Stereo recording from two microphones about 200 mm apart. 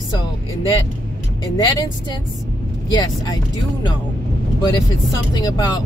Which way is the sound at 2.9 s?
20° left (ahead or behind).